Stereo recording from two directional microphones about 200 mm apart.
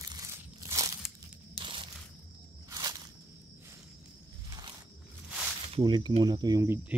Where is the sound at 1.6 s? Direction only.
25° right (ahead or behind).